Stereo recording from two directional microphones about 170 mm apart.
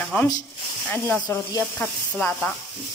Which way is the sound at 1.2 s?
20° left (ahead or behind).